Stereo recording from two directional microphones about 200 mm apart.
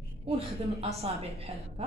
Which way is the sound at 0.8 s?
30° right (ahead or behind).